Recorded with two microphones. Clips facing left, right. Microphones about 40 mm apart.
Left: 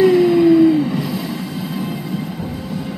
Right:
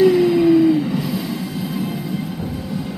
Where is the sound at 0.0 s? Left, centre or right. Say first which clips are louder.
Left 2 dB; centre.